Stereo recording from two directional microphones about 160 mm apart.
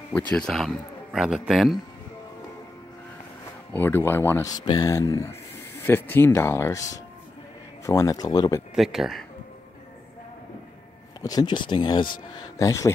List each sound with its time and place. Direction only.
0.3 s speech: 5° left (ahead or behind)
3.7 s speech: 15° left (ahead or behind)
8.7 s speech: centre (ahead or behind)
11.2 s speech: 25° left (ahead or behind)